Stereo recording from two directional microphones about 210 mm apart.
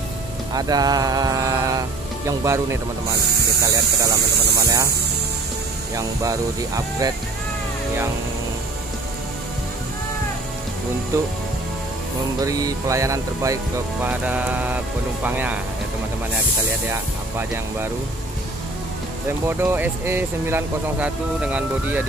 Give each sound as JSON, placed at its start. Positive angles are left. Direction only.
{"t": 0.5, "sound": "speech", "side_deg": -20}
{"t": 4.4, "sound": "speech", "side_deg": -50}
{"t": 5.9, "sound": "speech", "side_deg": -15}
{"t": 12.4, "sound": "speech", "side_deg": -15}
{"t": 16.9, "sound": "speech", "side_deg": -10}
{"t": 19.4, "sound": "speech", "side_deg": -10}